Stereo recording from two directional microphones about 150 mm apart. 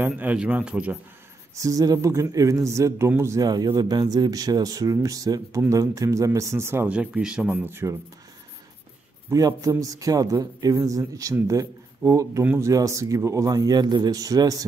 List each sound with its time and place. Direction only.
0.0 s speech: 10° right (ahead or behind)
1.5 s a man's voice: 20° right (ahead or behind)
9.3 s a man's voice: 20° right (ahead or behind)